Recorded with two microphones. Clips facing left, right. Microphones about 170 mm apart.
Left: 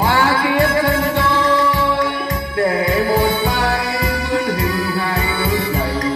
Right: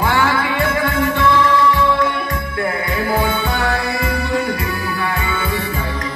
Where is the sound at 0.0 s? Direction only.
40° left (ahead or behind).